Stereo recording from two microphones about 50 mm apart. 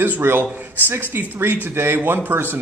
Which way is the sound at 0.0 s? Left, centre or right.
Right.